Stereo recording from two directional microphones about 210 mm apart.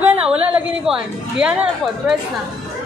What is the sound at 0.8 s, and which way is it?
A woman's voice, 5° right (ahead or behind).